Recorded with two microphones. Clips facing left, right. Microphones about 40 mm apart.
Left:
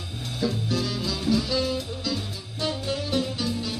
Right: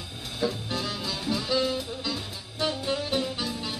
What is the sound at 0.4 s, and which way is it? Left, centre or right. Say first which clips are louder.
Music: left 2 dB; centre.